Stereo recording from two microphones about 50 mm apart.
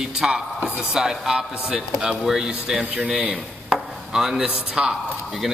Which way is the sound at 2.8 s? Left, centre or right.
Right.